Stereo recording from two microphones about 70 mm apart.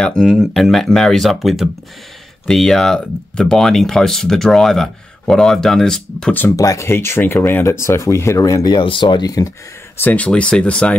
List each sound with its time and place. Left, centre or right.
0.0 s speech: centre
6.5 s speech: left
6.9 s speech: left
7.6 s speech: left
8.6 s speech: left
9.9 s speech: left